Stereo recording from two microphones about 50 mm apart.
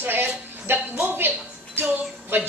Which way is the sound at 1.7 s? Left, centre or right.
Right.